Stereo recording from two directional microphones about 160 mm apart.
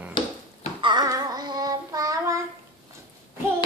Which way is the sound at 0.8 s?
25° right (ahead or behind).